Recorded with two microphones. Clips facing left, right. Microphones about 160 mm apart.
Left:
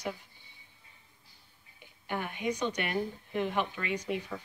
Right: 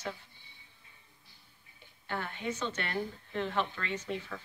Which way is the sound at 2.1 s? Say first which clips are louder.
Left 3 dB; 15° left (ahead or behind).